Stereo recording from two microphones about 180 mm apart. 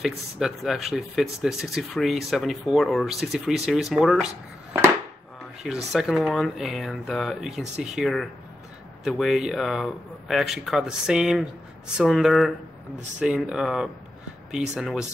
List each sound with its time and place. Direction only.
0.0 s speech: centre (ahead or behind)
5.6 s speech: centre (ahead or behind)